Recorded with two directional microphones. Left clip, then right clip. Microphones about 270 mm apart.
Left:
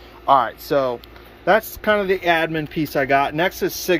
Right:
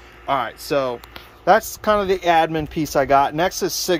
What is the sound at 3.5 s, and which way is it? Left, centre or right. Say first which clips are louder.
Speech: right 1 dB; right.